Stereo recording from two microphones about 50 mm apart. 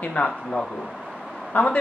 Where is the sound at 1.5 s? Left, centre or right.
Left.